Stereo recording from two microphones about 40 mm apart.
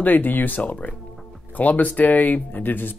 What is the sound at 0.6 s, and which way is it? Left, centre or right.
Speech, left.